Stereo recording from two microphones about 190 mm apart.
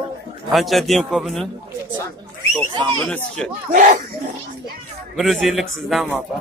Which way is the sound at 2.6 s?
5° left (ahead or behind).